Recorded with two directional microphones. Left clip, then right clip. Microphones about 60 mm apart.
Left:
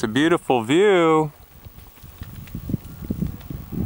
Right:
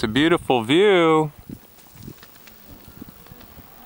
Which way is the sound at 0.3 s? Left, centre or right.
Centre.